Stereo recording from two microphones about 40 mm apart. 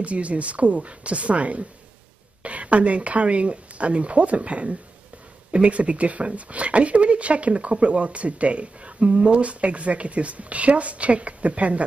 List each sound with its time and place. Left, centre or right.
0.0 s speech: right